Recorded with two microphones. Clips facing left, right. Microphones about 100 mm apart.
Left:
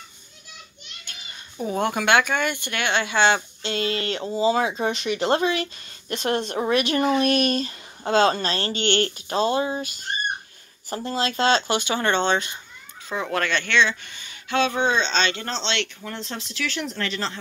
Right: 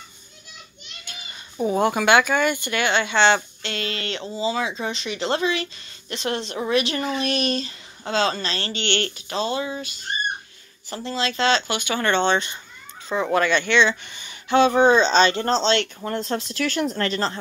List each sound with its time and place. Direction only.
1.1 s a sound: 5° right (ahead or behind)
1.6 s speech: 5° right (ahead or behind)
3.6 s speech: 35° left (ahead or behind)
4.4 s speech: 45° left (ahead or behind)
11.1 s speech: 45° left (ahead or behind)
11.9 s speech: 15° left (ahead or behind)
12.2 s speech: 5° left (ahead or behind)
13.8 s speech: 25° right (ahead or behind); by 17.4 s 40° right (ahead or behind)